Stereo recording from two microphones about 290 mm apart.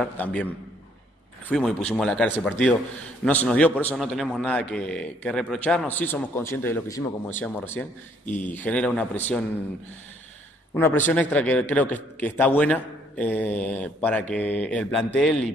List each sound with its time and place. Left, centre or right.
0.0 s a man's voice: centre
1.5 s a man's voice: centre
10.7 s a man's voice: centre